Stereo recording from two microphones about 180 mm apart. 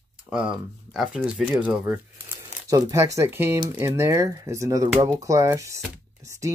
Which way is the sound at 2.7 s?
15° right (ahead or behind).